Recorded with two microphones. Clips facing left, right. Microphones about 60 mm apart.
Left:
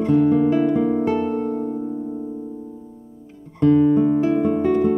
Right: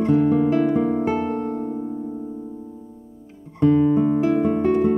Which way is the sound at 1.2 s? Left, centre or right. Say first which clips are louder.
Left 2 dB; right.